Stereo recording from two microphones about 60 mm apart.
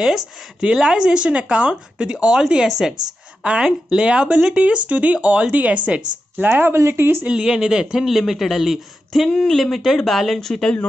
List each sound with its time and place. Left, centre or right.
0.6 s speech: centre
6.4 s speech: right
6.7 s speech: right
7.2 s a man's voice: centre